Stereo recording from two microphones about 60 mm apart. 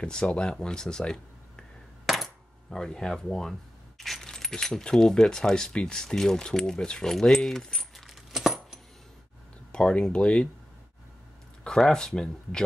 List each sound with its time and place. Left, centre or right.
0.0 s speech: centre
2.1 s coin: centre
2.7 s speech: centre
8.1 s coin: centre
9.7 s speech: centre
11.8 s speech: centre